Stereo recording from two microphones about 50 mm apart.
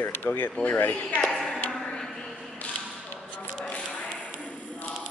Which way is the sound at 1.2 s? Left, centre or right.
Centre.